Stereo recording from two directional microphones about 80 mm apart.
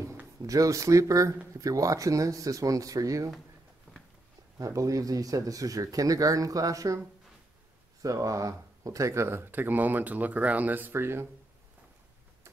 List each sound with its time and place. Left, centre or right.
0.5 s speech: right
4.6 s speech: right
8.0 s speech: right